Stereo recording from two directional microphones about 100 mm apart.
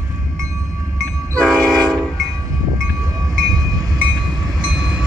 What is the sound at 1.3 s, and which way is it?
Train, 5° left (ahead or behind).